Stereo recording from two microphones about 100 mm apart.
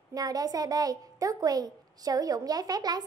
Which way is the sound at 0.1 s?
40° right (ahead or behind).